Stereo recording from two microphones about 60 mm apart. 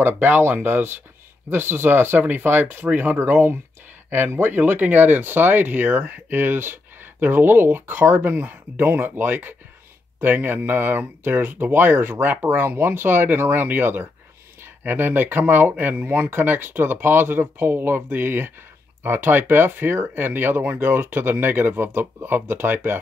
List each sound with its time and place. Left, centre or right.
0.0 s speech: right